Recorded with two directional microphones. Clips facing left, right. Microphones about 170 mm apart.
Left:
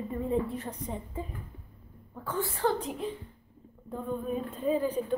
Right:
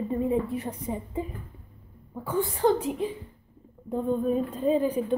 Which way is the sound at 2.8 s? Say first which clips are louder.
Right 5 dB; centre (ahead or behind).